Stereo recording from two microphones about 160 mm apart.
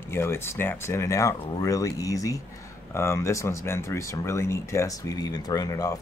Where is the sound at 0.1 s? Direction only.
15° left (ahead or behind).